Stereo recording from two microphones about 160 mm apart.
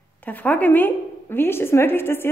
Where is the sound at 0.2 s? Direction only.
10° left (ahead or behind).